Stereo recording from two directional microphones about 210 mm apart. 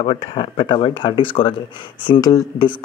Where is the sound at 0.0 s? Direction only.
25° left (ahead or behind).